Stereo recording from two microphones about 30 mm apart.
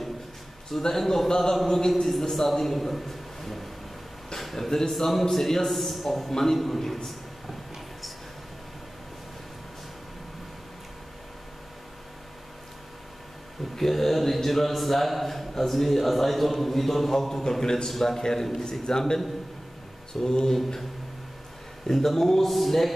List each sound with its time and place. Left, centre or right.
0.8 s a man's voice: centre
2.0 s a man's voice: centre
4.4 s a sound: centre
4.8 s speech: centre
13.7 s speech: centre
17.3 s a man's voice: centre
20.2 s a man's voice: left
21.8 s speech: centre